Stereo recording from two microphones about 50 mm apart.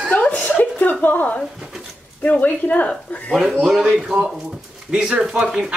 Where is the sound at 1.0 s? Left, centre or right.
Left.